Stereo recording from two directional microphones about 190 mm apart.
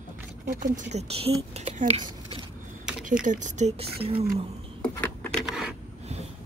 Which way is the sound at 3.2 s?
40° right (ahead or behind).